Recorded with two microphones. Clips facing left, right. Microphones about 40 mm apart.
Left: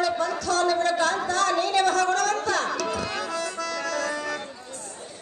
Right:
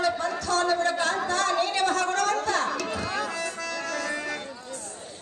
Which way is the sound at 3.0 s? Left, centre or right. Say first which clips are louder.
Even; left.